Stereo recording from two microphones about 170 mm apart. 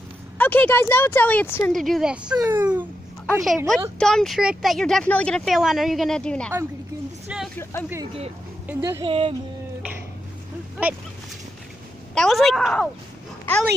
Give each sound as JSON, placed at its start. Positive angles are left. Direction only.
{"t": 0.4, "sound": "speech", "side_deg": 10}
{"t": 1.7, "sound": "speech", "side_deg": 0}
{"t": 2.3, "sound": "speech", "side_deg": -20}
{"t": 3.3, "sound": "speech", "side_deg": 0}
{"t": 7.2, "sound": "a sound", "side_deg": -5}
{"t": 7.7, "sound": "speech", "side_deg": 15}
{"t": 9.0, "sound": "music", "side_deg": -30}
{"t": 10.8, "sound": "speech", "side_deg": -10}
{"t": 12.2, "sound": "speech", "side_deg": 0}